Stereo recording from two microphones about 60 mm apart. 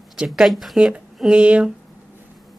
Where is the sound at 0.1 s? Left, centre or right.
Centre.